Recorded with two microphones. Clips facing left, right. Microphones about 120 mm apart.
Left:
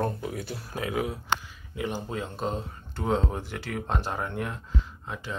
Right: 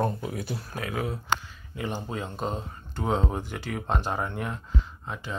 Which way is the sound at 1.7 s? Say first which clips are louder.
Left 1 dB; centre (ahead or behind).